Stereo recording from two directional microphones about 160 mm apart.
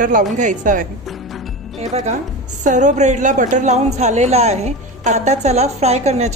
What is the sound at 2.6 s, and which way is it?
A woman's voice, 50° right (ahead or behind).